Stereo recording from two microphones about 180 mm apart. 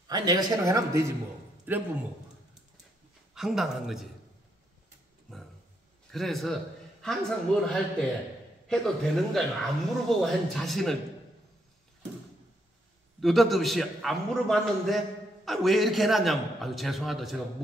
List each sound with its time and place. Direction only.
0.1 s a man's voice: 20° right (ahead or behind)
3.3 s speech: centre (ahead or behind)
6.1 s speech: centre (ahead or behind)
13.2 s speech: centre (ahead or behind)